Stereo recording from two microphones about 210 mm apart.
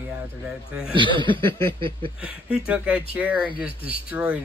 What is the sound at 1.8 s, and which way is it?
Speech, 25° right (ahead or behind).